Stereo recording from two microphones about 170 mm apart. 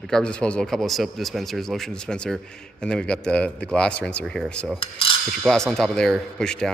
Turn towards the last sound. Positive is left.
turn(degrees=5)  # may be behind; listen again after turning